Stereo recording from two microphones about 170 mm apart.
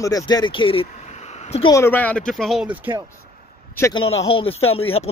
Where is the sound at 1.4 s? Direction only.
40° left (ahead or behind).